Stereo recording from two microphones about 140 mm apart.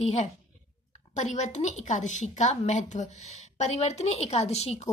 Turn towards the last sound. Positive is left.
turn(degrees=50)  # may be behind; listen again after turning